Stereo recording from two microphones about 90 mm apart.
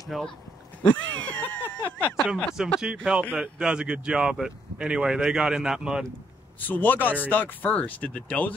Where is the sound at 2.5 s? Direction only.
10° right (ahead or behind).